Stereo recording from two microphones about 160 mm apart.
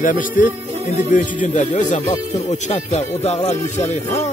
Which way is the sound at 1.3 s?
50° left (ahead or behind).